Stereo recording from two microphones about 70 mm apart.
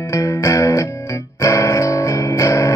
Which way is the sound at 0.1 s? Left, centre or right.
Left.